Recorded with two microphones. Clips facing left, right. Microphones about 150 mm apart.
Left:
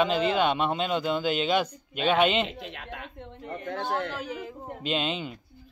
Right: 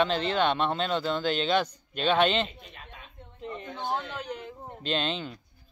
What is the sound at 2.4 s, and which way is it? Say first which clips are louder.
Speech: left 9 dB; 80° left.